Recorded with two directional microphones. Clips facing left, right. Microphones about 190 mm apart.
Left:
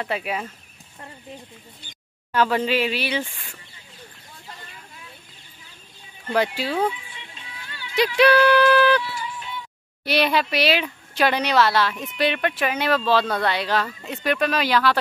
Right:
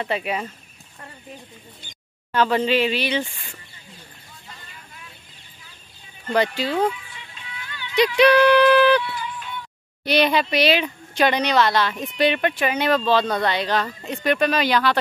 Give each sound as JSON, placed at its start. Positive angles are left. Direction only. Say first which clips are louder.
{"t": 0.0, "sound": "speech", "louder": "right 2 dB", "side_deg": 0}
{"t": 2.3, "sound": "speech", "louder": "right 1 dB", "side_deg": 5}
{"t": 6.3, "sound": "speech", "louder": "right 1 dB", "side_deg": 10}
{"t": 7.2, "sound": "music", "louder": "right 2 dB", "side_deg": 30}
{"t": 8.0, "sound": "a sound", "louder": "right 2 dB", "side_deg": 5}
{"t": 10.0, "sound": "speech", "louder": "right 2 dB", "side_deg": 5}